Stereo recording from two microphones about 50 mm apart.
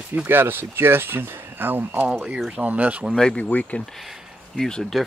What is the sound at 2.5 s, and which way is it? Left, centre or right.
Speech, right.